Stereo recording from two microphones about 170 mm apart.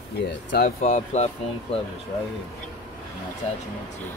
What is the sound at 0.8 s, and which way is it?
Speech, 40° left (ahead or behind).